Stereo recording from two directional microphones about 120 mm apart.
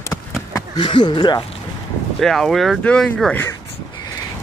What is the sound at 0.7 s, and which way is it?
Speech, 40° left (ahead or behind).